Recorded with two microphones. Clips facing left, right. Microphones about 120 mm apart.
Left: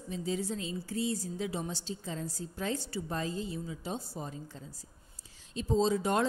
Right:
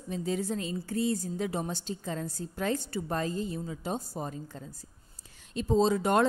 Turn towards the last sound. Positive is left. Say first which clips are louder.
# right 4 dB
turn(degrees=-60)  # may be behind; listen again after turning